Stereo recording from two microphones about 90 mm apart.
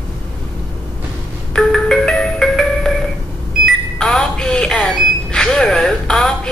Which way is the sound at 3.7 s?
5° left (ahead or behind).